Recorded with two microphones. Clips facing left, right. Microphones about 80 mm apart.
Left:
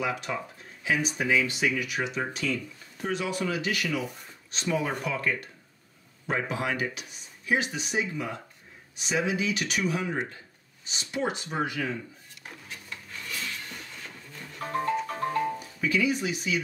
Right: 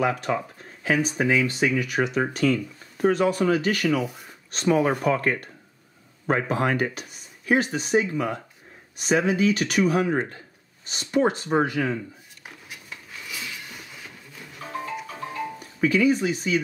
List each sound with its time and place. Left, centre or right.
0.0 s speech: right
6.5 s speech: right
12.6 s a sound: centre
15.0 s music: left
15.8 s speech: right